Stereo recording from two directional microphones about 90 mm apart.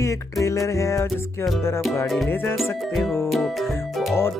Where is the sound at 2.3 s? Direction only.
25° left (ahead or behind).